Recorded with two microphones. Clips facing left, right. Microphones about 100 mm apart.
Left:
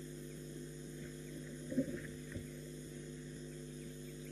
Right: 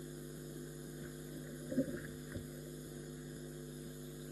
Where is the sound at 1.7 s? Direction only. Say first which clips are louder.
Right 1 dB; 15° right (ahead or behind).